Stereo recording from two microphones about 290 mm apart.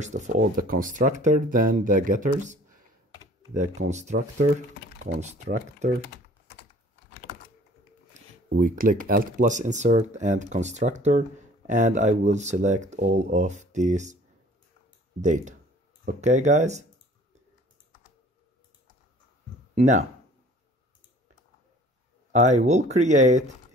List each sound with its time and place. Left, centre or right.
0.0 s speech: right
3.5 s speech: right
8.5 s speech: right
15.2 s speech: right
19.7 s speech: right
22.3 s speech: right